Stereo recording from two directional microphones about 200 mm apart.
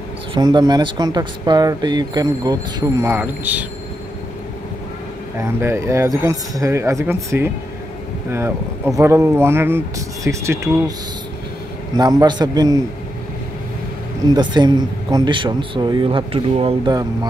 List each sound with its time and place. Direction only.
0.3 s speech: 20° right (ahead or behind)
5.4 s speech: 15° right (ahead or behind)
12.0 s speech: 20° right (ahead or behind)
14.3 s speech: 20° right (ahead or behind)